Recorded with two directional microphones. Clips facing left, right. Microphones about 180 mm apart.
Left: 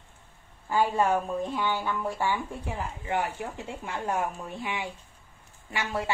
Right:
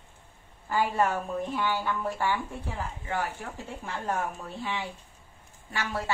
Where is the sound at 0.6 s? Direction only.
15° left (ahead or behind).